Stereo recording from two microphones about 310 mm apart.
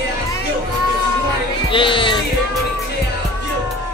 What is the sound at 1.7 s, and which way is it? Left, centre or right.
Music, centre.